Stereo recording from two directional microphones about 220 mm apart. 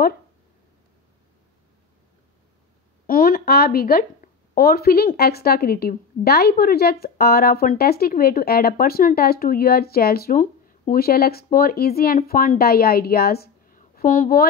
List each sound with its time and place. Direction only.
3.1 s speech: 40° left (ahead or behind)